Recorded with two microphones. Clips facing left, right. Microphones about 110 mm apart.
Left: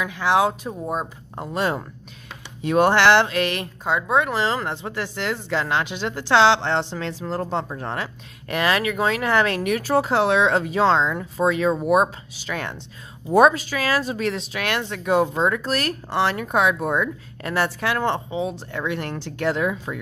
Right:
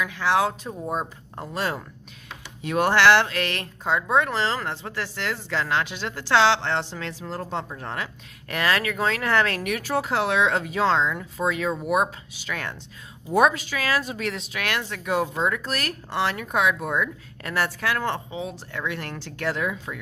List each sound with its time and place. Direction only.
0.0 s speech: 15° left (ahead or behind)
1.3 s speech: 20° left (ahead or behind); by 8.1 s 35° left (ahead or behind)
8.5 s speech: 20° left (ahead or behind)
9.6 s speech: 30° left (ahead or behind)